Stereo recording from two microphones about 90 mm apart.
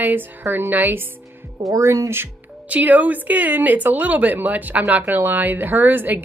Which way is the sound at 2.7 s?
15° right (ahead or behind).